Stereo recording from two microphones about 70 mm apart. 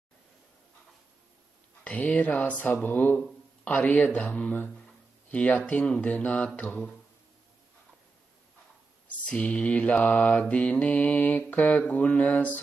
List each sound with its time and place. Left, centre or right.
1.9 s mantra: left
9.3 s mantra: centre